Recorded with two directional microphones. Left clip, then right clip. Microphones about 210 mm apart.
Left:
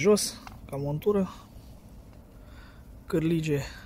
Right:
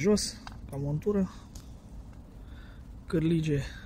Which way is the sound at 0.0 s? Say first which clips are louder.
Left 4 dB; 10° left (ahead or behind).